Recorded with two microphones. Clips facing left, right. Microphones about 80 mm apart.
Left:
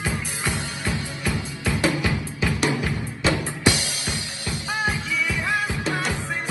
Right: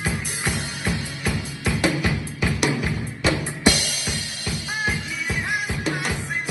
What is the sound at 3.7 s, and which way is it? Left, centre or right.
Music, right.